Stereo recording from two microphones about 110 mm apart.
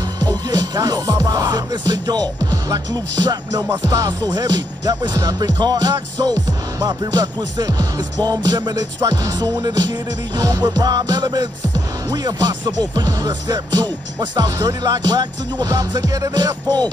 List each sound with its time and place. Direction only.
0.2 s music: 35° right (ahead or behind)